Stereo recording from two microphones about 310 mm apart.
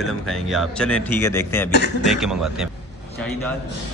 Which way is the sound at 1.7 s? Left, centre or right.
Left.